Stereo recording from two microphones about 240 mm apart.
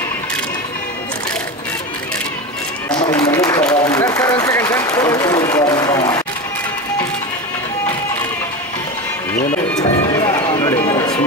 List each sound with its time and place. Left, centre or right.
2.9 s applause: centre
9.8 s music: centre